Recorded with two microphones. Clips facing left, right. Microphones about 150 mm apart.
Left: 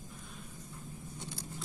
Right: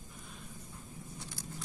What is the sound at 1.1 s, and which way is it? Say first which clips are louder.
Vehicle: left 4 dB; 20° left (ahead or behind).